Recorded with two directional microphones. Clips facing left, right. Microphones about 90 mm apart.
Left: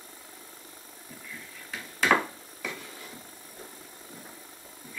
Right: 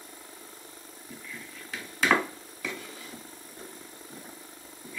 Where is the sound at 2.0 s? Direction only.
15° left (ahead or behind).